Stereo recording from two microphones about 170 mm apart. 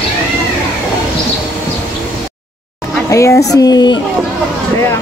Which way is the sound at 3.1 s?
15° left (ahead or behind).